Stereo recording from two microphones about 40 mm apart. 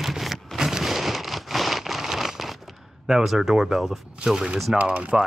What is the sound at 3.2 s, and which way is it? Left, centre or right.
Speech, centre.